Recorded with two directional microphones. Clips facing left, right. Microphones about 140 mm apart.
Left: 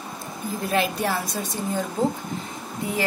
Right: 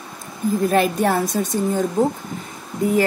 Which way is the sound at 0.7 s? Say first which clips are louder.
Right 3 dB; 50° right (ahead or behind).